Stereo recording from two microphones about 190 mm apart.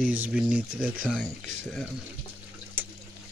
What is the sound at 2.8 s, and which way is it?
Water, 10° right (ahead or behind).